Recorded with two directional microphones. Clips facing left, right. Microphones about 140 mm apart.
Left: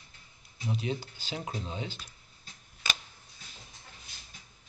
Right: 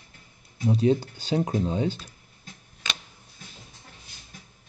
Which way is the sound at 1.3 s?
40° right (ahead or behind).